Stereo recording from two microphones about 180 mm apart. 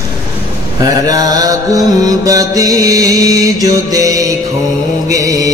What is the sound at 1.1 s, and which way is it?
Music, 20° right (ahead or behind).